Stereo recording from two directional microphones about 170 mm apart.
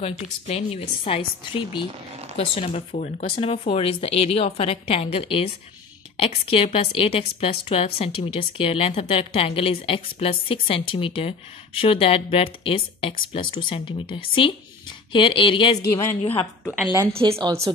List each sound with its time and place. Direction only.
0.0 s a woman's voice: 35° left (ahead or behind)
16.7 s a woman's voice: 10° right (ahead or behind)